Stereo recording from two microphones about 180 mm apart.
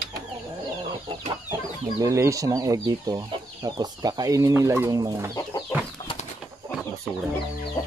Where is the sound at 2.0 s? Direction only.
15° right (ahead or behind).